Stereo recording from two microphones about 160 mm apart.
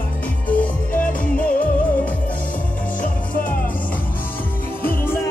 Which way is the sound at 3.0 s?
55° left (ahead or behind).